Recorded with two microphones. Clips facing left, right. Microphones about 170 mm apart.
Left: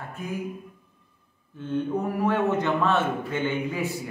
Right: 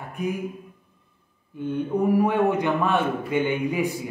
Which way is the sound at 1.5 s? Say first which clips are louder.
Right 1 dB; 15° right (ahead or behind).